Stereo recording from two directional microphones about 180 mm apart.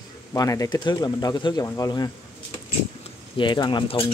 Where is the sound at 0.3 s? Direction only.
20° left (ahead or behind).